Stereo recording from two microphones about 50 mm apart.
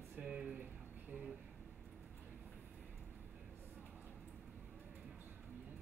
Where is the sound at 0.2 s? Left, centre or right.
Centre.